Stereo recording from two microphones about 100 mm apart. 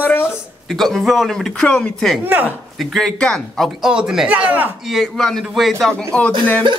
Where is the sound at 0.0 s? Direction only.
20° left (ahead or behind).